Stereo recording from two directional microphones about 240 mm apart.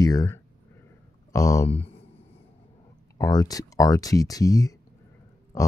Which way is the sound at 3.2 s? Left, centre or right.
Centre.